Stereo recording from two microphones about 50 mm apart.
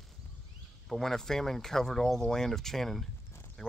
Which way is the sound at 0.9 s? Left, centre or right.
Centre.